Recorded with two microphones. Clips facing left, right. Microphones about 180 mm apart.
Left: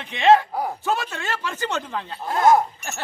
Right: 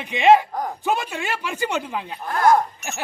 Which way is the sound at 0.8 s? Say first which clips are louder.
Right 1 dB; 15° right (ahead or behind).